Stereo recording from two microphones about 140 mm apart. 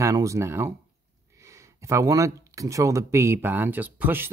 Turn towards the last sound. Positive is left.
turn(degrees=-15)  # may be behind; listen again after turning